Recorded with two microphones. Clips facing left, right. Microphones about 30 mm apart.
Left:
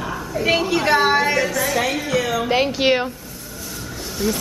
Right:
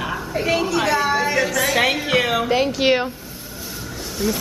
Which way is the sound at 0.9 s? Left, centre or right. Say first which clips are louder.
Left 6 dB; left.